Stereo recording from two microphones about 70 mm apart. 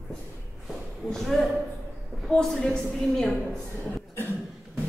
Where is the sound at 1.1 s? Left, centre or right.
Centre.